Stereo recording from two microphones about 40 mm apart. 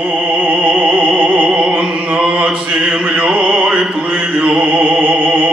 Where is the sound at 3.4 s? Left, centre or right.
Centre.